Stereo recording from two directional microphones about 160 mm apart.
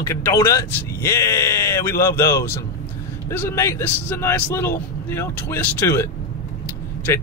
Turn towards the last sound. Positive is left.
turn(degrees=15)  # may be behind; listen again after turning